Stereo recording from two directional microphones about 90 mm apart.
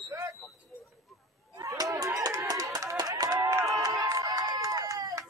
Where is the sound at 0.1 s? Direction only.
35° right (ahead or behind).